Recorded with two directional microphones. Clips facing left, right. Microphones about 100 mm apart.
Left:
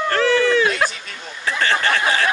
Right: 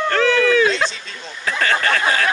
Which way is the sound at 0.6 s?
25° right (ahead or behind).